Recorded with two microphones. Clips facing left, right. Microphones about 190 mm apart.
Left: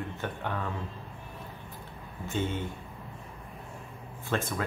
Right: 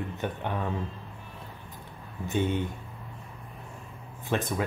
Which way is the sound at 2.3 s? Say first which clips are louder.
Right 4 dB; 15° right (ahead or behind).